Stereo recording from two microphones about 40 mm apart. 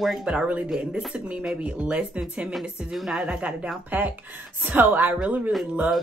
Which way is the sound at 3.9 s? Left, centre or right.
Right.